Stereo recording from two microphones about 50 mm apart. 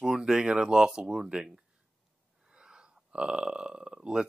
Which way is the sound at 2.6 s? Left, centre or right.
Centre.